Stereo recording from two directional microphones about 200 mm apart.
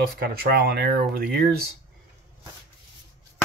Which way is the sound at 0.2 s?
50° right (ahead or behind).